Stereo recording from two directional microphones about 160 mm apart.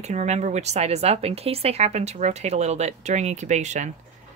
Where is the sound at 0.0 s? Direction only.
45° right (ahead or behind).